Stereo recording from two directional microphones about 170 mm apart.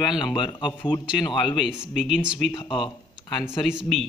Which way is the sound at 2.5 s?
30° left (ahead or behind).